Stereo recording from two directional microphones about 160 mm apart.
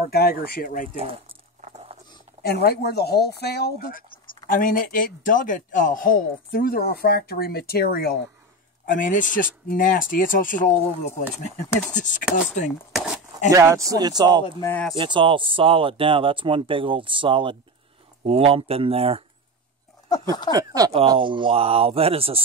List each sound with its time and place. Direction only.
0.1 s a man's voice: 75° left (ahead or behind)
2.4 s a man's voice: 90° left; by 8.2 s 70° left (ahead or behind)
8.9 s speech: 55° left (ahead or behind)
11.9 s chopping: 50° left (ahead or behind)
12.9 s a sound: 5° right (ahead or behind)
13.5 s speech: 20° right (ahead or behind)
14.6 s speech: 15° left (ahead or behind)
15.0 s speech: 30° right (ahead or behind)
20.1 s speech: 25° left (ahead or behind)
20.5 s speech: 20° right (ahead or behind)